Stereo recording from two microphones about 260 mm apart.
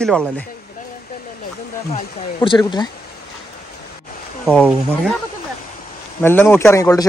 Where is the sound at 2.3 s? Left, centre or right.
Centre.